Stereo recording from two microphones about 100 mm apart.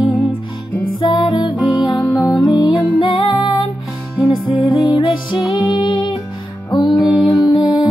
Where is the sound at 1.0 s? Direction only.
55° left (ahead or behind).